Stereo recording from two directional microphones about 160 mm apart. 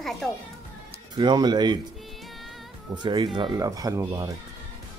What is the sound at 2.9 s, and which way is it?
Speech, 30° right (ahead or behind).